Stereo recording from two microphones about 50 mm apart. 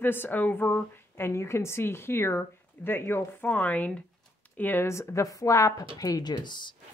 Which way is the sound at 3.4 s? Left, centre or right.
Left.